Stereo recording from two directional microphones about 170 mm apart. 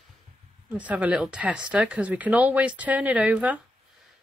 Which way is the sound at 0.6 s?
10° right (ahead or behind).